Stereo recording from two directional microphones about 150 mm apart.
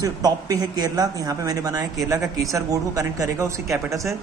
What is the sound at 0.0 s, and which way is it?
A man's voice, 25° right (ahead or behind).